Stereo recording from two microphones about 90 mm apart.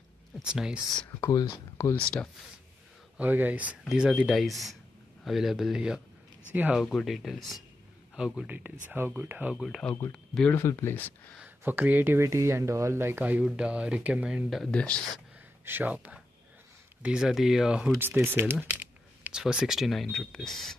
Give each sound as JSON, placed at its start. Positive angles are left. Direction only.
{"t": 0.4, "sound": "speech", "side_deg": -10}
{"t": 1.3, "sound": "speech", "side_deg": 40}
{"t": 2.0, "sound": "speech", "side_deg": 10}
{"t": 3.2, "sound": "speech", "side_deg": -20}
{"t": 8.5, "sound": "speech", "side_deg": -20}
{"t": 9.6, "sound": "speech", "side_deg": 0}
{"t": 10.1, "sound": "speech", "side_deg": 10}
{"t": 10.5, "sound": "speech", "side_deg": 30}
{"t": 11.4, "sound": "speech", "side_deg": -20}
{"t": 12.2, "sound": "speech", "side_deg": -30}
{"t": 14.5, "sound": "speech", "side_deg": 5}
{"t": 15.6, "sound": "speech", "side_deg": -20}
{"t": 18.0, "sound": "typing", "side_deg": -25}
{"t": 19.4, "sound": "speech", "side_deg": -5}